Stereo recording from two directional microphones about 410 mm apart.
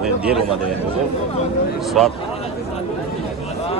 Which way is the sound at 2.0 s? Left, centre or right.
Centre.